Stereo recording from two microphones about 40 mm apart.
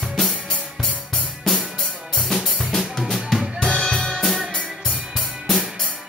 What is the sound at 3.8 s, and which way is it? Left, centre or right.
Music, centre.